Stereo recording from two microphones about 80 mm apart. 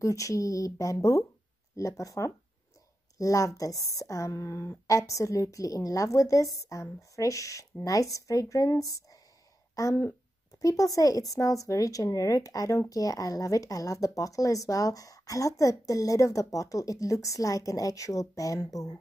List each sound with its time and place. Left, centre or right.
0.0 s speech: left